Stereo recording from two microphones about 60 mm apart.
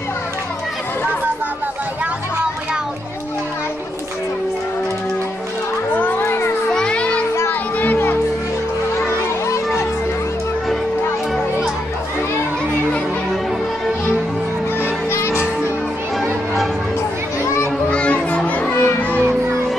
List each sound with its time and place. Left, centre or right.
5.9 s music: left
6.7 s children playing: centre
7.8 s music: left
15.0 s music: left
17.8 s children playing: left
18.7 s music: left